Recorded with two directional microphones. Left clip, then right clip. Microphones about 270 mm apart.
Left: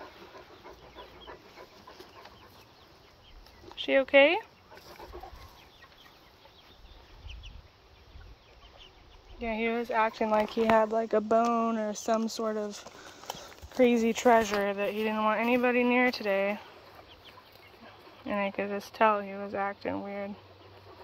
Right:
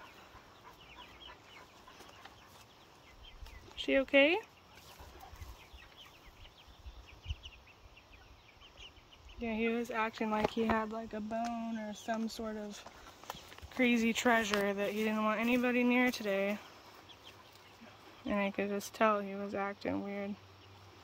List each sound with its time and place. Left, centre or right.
3.7 s speech: centre
9.4 s speech: centre
18.2 s speech: centre